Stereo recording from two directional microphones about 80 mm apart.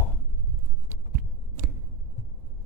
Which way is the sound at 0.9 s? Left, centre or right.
Right.